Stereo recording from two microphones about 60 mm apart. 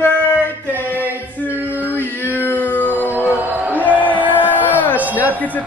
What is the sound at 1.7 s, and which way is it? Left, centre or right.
Male singing, left.